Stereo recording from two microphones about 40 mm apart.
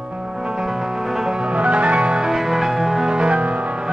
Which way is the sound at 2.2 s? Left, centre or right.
Centre.